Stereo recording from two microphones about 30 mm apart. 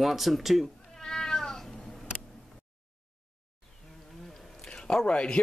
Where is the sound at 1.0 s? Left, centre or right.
Centre.